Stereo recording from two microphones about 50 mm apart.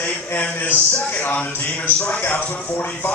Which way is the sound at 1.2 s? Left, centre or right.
Left.